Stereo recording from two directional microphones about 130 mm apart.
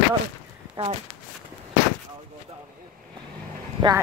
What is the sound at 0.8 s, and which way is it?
Speech, 50° right (ahead or behind).